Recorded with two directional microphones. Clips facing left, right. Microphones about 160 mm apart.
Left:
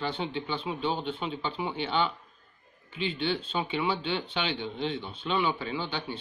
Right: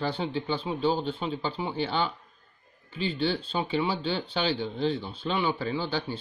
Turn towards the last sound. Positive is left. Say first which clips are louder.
# right 3 dB
turn(degrees=-35)  # may be behind; listen again after turning